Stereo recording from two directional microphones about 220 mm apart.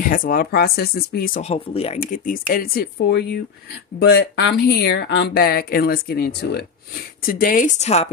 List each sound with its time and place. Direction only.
0.1 s speech: 40° left (ahead or behind)
1.4 s speech: 25° left (ahead or behind)